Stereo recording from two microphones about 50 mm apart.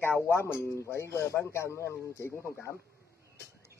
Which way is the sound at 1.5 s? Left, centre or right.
Left.